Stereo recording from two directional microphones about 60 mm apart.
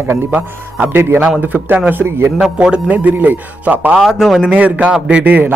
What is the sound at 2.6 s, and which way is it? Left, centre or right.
Speech, centre.